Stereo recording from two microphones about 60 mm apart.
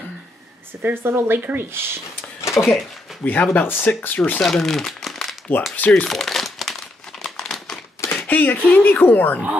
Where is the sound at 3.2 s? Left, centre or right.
Left.